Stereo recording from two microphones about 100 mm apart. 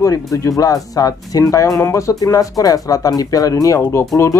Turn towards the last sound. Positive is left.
turn(degrees=25)  # may be behind; listen again after turning